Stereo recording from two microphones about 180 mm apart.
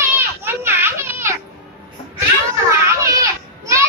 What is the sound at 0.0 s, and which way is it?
Children playing, 10° right (ahead or behind).